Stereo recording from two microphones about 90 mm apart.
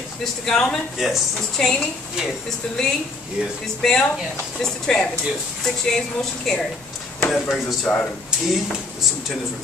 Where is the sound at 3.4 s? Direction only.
5° left (ahead or behind).